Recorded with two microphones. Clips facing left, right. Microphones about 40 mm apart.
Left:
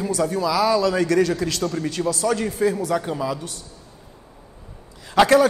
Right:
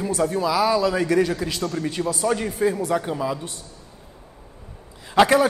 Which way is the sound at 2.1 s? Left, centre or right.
Centre.